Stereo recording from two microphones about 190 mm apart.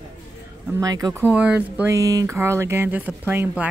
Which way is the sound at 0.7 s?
20° right (ahead or behind).